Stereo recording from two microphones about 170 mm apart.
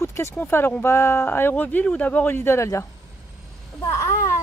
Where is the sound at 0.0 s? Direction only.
15° left (ahead or behind).